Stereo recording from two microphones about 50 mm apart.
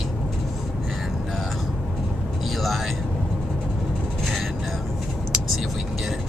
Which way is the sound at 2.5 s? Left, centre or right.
Centre.